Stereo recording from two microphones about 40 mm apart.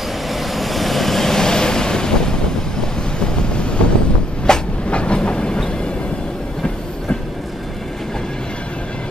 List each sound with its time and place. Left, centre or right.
0.3 s vehicle: centre
2.8 s wind noise: left
4.5 s train: centre
4.8 s train: left